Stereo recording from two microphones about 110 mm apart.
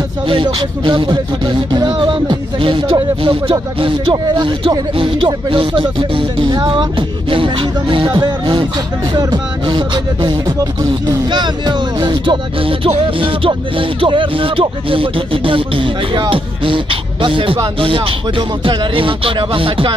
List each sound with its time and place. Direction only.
0.3 s music: 50° right (ahead or behind)